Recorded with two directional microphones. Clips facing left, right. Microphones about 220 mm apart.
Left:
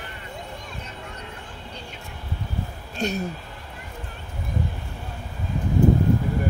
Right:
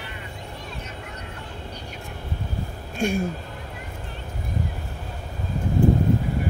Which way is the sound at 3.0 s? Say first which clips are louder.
Right 3 dB; 10° right (ahead or behind).